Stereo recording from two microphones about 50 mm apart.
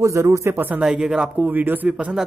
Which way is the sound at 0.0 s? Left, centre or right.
Right.